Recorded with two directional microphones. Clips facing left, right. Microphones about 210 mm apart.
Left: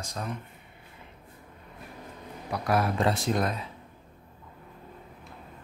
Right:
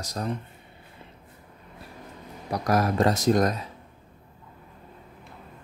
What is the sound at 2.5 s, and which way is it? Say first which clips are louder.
Speech: right 3 dB; 40° right (ahead or behind).